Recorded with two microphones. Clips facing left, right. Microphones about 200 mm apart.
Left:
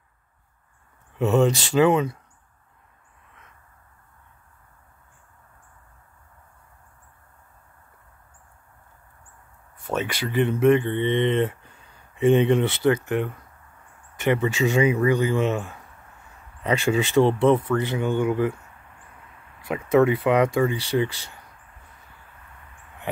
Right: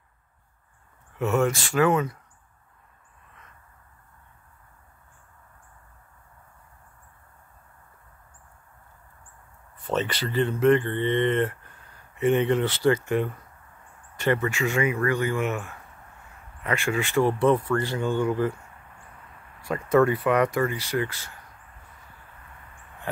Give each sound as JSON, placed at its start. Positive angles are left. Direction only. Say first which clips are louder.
{"t": 1.1, "sound": "speech", "louder": "left 4 dB", "side_deg": 20}
{"t": 9.8, "sound": "speech", "louder": "even", "side_deg": 10}
{"t": 15.4, "sound": "speech", "louder": "left 4 dB", "side_deg": 30}
{"t": 19.6, "sound": "speech", "louder": "left 2 dB", "side_deg": 20}